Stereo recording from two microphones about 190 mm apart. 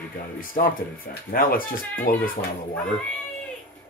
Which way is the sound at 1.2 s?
50° left (ahead or behind).